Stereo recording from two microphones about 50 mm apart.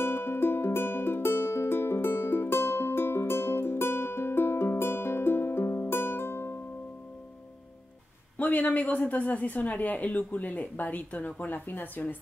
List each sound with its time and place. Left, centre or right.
0.0 s music: left
8.4 s speech: left